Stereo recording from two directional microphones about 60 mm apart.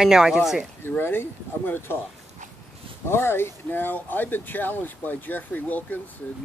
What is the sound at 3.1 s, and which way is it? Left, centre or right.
Speech, left.